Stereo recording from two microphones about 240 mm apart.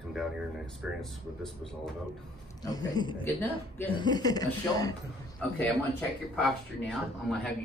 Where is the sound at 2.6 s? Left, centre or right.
Centre.